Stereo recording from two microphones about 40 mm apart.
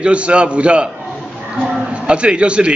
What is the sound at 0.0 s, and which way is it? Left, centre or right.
Speech, right.